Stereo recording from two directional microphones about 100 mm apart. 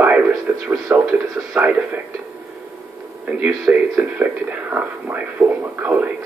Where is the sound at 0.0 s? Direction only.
15° right (ahead or behind).